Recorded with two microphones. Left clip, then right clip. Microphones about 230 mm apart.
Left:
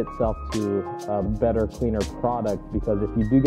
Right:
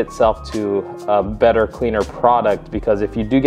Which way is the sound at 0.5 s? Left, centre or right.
Centre.